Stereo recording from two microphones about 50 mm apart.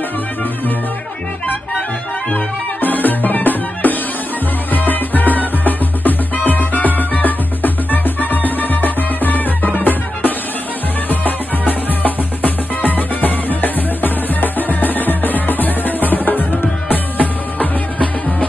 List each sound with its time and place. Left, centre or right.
2.3 s music: left